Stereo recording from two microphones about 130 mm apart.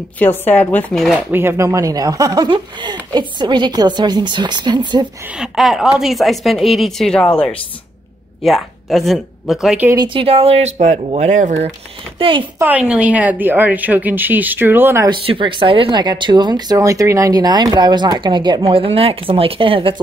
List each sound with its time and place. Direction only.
0.2 s speech: 15° left (ahead or behind)
1.3 s speech: 15° right (ahead or behind); by 5.0 s 35° right (ahead or behind)
5.3 s a woman's voice: 5° right (ahead or behind)
8.5 s speech: centre (ahead or behind)
9.9 s speech: 40° right (ahead or behind); by 11.7 s 65° right (ahead or behind)
12.2 s speech: 40° right (ahead or behind)
12.5 s a woman's voice: 10° right (ahead or behind)
15.0 s speech: 40° right (ahead or behind)